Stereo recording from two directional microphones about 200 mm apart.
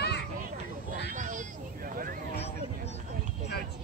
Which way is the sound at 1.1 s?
40° right (ahead or behind).